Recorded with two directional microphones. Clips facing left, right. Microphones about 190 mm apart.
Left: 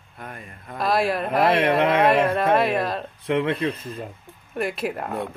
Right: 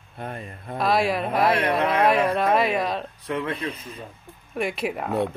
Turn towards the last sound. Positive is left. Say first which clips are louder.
# right 2 dB
turn(degrees=0)  # may be behind; listen again after turning